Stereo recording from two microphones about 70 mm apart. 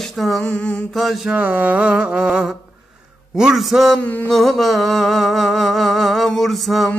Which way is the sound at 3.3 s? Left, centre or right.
Centre.